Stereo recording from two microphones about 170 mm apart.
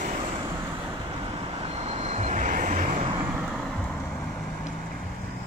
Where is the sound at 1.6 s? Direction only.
35° right (ahead or behind).